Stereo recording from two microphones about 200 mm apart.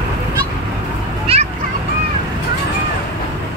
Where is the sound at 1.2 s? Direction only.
30° right (ahead or behind).